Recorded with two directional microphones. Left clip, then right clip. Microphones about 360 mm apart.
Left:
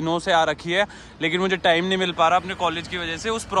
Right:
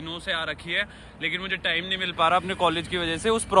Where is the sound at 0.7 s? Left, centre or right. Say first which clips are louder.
Left 4 dB; left.